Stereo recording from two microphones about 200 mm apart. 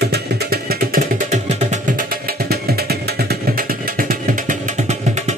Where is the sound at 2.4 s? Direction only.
50° right (ahead or behind).